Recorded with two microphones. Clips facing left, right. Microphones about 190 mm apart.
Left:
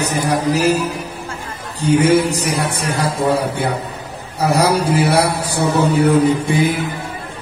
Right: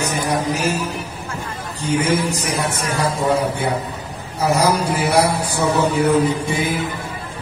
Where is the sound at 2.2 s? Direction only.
35° left (ahead or behind).